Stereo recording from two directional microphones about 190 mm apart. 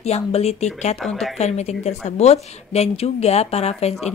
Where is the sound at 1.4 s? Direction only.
35° left (ahead or behind).